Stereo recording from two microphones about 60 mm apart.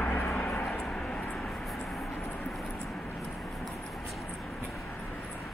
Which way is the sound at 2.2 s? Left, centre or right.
Left.